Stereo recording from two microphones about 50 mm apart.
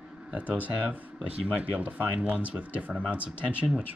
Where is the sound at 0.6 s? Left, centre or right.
Right.